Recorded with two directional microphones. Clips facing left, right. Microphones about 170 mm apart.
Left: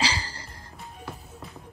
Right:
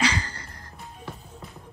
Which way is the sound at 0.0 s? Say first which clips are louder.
Right 3 dB; 30° left (ahead or behind).